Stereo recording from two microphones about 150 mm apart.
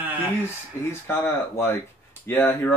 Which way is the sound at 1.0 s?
15° left (ahead or behind).